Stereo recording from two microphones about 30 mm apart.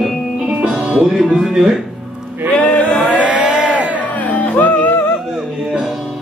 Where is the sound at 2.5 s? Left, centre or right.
Left.